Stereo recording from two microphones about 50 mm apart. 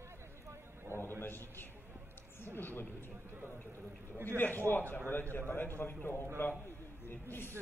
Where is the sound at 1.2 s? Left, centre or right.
Left.